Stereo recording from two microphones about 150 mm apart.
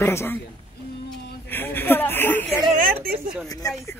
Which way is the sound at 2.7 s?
75° right (ahead or behind).